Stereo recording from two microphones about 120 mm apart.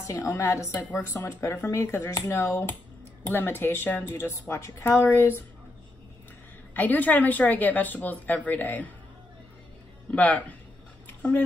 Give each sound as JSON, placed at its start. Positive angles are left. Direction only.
{"t": 0.0, "sound": "speech", "side_deg": 25}
{"t": 6.7, "sound": "speech", "side_deg": 15}
{"t": 10.1, "sound": "speech", "side_deg": 10}